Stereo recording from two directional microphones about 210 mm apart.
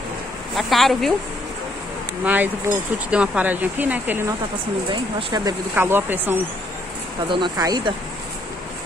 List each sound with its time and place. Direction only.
0.6 s a woman's voice: centre (ahead or behind)
2.2 s speech: 10° right (ahead or behind)
7.2 s speech: 20° right (ahead or behind)